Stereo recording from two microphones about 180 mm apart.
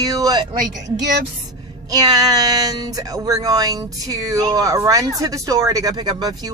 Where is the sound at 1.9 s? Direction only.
20° right (ahead or behind).